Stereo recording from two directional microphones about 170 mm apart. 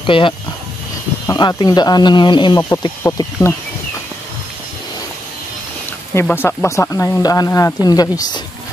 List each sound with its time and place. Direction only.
0.0 s speech: 30° left (ahead or behind)
3.0 s speech: 15° left (ahead or behind)
6.1 s speech: 10° left (ahead or behind)